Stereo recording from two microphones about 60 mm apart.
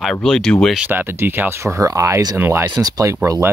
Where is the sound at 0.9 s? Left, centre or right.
Right.